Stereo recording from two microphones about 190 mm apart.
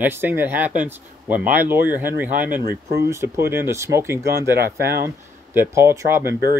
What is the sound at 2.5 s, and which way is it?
Speech, 50° right (ahead or behind).